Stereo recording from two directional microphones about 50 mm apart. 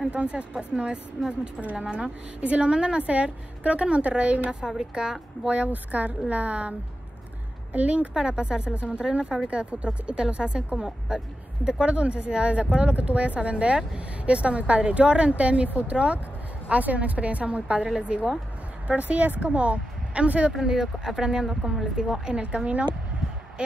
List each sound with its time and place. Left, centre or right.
0.1 s speech: right
4.6 s speech: centre
5.6 s speech: right
7.7 s speech: right
20.5 s speech: centre
22.2 s speech: right